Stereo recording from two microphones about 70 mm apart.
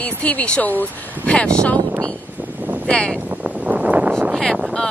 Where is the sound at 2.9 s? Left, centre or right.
Centre.